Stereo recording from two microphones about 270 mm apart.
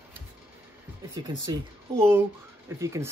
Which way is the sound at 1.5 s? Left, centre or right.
Centre.